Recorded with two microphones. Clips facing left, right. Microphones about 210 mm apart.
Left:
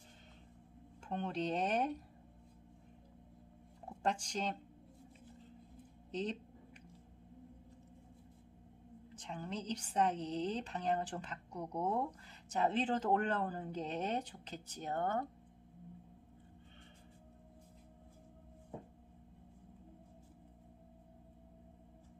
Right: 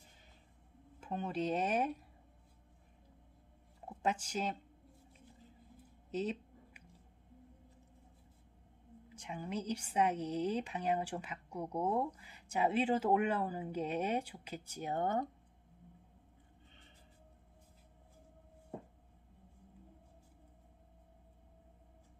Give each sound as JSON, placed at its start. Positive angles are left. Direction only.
{"t": 1.0, "sound": "speech", "side_deg": -5}
{"t": 4.0, "sound": "speech", "side_deg": -5}
{"t": 6.1, "sound": "a sound", "side_deg": -5}
{"t": 9.1, "sound": "speech", "side_deg": -10}